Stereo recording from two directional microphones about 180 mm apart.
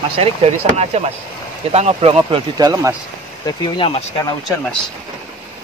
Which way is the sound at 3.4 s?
25° left (ahead or behind).